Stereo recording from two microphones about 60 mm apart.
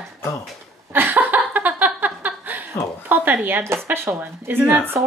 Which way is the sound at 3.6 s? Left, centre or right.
Right.